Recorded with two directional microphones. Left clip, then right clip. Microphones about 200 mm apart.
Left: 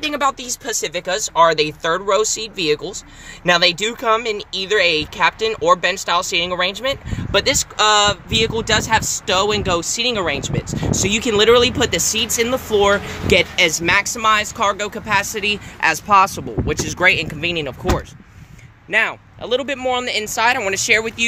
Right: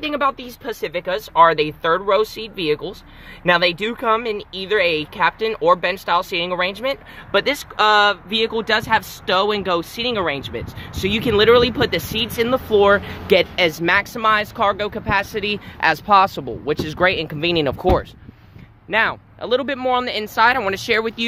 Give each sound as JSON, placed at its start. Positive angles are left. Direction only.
{"t": 0.0, "sound": "speech", "side_deg": -10}
{"t": 17.4, "sound": "speech", "side_deg": -25}
{"t": 18.9, "sound": "speech", "side_deg": -15}